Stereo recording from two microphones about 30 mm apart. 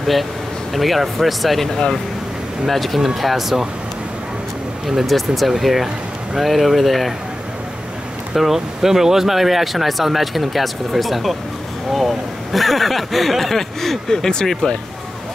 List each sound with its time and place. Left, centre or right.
0.0 s speech: centre
1.7 s speech: left
2.7 s speech: centre
5.0 s speech: centre
8.5 s speech: centre